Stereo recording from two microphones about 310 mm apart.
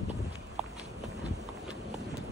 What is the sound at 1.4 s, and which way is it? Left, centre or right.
Clip-clop, centre.